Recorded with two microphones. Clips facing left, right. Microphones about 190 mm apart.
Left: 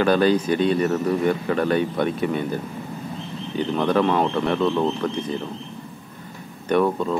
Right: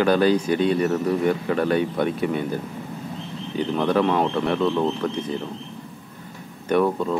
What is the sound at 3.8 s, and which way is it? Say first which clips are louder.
Speech: left 1 dB; 10° right (ahead or behind).